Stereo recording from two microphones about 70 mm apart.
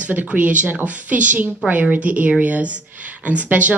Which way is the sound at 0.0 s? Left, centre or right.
Right.